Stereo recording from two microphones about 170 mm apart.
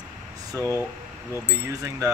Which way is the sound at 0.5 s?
15° left (ahead or behind).